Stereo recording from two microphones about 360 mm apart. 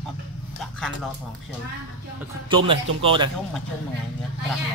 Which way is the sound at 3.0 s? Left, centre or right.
Centre.